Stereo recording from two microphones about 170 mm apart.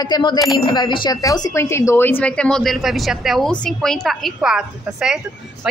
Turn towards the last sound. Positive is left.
turn(degrees=-5)  # may be behind; listen again after turning